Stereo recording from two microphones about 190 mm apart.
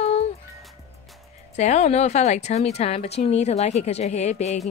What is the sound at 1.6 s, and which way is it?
A woman's voice, 35° left (ahead or behind).